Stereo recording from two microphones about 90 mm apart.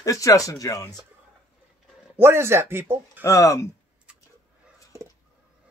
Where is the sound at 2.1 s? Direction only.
25° right (ahead or behind).